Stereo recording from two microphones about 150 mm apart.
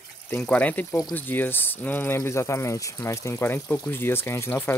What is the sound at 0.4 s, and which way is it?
Speech, 10° left (ahead or behind).